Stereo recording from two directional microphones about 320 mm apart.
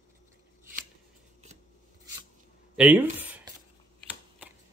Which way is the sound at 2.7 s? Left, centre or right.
Centre.